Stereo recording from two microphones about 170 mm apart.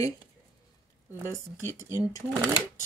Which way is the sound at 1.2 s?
20° left (ahead or behind).